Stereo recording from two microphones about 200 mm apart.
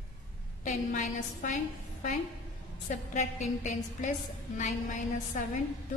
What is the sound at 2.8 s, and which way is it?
A woman's voice, 40° left (ahead or behind).